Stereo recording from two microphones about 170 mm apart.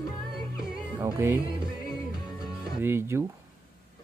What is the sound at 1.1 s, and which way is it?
Speech, 15° right (ahead or behind).